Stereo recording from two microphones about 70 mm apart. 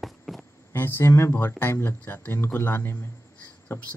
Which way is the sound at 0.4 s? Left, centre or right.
Left.